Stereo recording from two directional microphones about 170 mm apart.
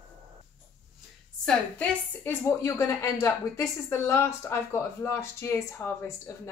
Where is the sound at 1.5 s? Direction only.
10° left (ahead or behind).